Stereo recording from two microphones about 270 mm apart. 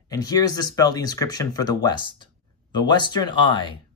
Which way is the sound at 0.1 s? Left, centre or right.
Centre.